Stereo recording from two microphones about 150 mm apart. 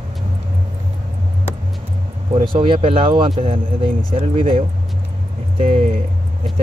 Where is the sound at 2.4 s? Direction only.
35° right (ahead or behind).